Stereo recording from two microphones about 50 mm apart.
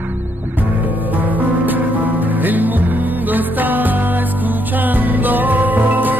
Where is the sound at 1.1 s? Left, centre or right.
Right.